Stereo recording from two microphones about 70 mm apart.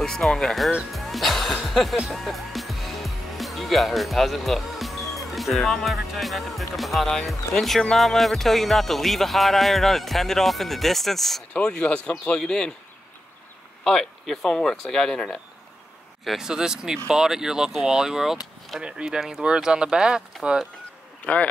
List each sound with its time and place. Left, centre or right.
0.0 s speech: centre
11.5 s speech: centre
13.8 s speech: centre
16.3 s speech: centre
21.3 s a man's voice: left